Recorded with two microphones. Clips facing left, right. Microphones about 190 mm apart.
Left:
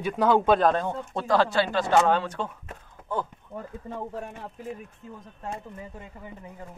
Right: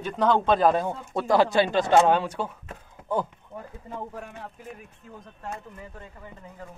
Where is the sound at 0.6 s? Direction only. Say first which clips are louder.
Right 1 dB; 10° right (ahead or behind).